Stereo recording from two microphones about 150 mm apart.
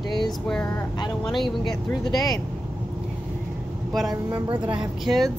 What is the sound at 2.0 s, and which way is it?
Speech, 25° left (ahead or behind).